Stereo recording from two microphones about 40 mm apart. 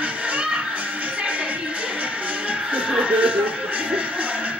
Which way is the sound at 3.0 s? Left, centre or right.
Right.